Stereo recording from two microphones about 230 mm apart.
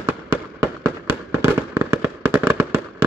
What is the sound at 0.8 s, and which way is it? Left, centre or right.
Fireworks, centre.